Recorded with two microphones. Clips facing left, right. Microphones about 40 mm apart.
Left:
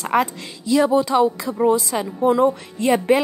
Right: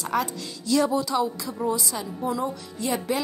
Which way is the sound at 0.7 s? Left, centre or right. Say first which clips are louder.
Left 5 dB; left.